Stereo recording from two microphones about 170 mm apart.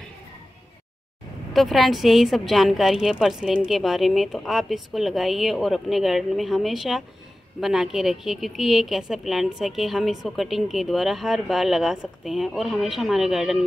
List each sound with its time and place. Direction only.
1.5 s a woman's voice: centre (ahead or behind)